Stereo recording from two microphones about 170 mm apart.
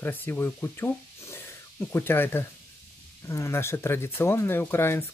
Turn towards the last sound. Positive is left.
turn(degrees=15)  # may be behind; listen again after turning